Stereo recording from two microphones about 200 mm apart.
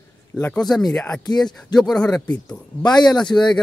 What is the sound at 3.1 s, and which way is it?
Speech, 5° left (ahead or behind).